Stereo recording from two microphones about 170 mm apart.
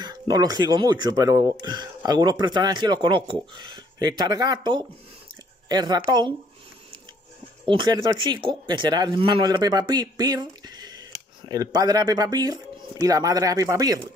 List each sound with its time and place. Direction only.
0.0 s speech: 25° right (ahead or behind)
7.6 s speech: 30° right (ahead or behind)